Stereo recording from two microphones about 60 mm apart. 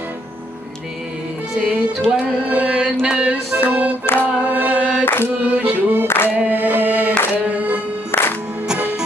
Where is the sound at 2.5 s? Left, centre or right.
Centre.